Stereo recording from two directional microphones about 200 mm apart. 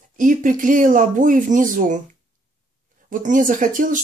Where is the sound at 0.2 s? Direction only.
40° right (ahead or behind).